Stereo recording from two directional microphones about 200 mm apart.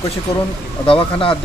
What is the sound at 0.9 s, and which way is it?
Speech, 25° left (ahead or behind).